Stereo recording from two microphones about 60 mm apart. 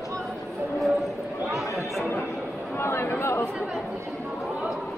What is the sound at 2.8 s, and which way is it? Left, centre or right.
Speech, left.